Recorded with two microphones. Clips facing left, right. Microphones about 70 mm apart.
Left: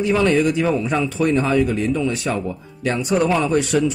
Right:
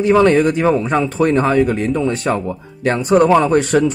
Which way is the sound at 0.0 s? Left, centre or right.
Right.